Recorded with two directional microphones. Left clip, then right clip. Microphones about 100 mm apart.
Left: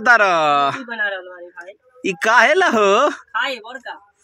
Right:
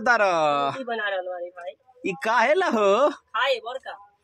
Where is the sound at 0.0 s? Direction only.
5° left (ahead or behind).